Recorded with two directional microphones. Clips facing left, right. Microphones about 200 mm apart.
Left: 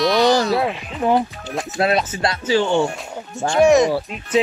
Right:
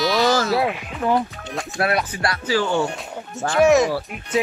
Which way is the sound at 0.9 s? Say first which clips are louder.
Left 4 dB; 20° left (ahead or behind).